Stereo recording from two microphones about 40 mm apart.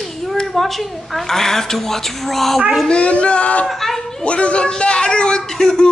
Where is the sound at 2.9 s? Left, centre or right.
Left.